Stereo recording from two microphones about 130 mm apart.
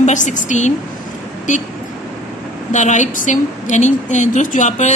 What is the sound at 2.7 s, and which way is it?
A woman's voice, 70° left (ahead or behind).